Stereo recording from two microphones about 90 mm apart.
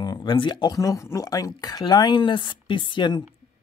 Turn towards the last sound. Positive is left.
turn(degrees=60)  # may be behind; listen again after turning